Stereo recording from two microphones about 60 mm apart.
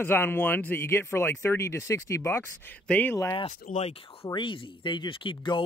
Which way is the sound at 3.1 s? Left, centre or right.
Left.